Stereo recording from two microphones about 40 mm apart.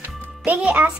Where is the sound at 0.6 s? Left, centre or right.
Right.